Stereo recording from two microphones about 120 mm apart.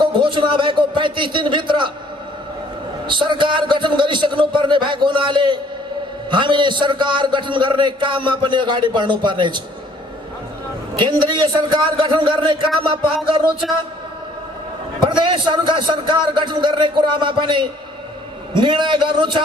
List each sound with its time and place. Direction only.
0.0 s a man's voice: 40° right (ahead or behind)
3.1 s a man's voice: 40° right (ahead or behind)
11.0 s a man's voice: 40° right (ahead or behind)
15.0 s a man's voice: 45° right (ahead or behind)